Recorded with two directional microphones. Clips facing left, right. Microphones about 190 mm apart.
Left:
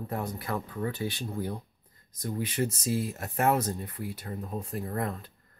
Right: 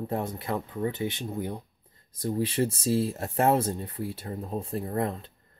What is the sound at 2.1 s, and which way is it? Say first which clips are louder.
Speech: right 5 dB; 30° right (ahead or behind).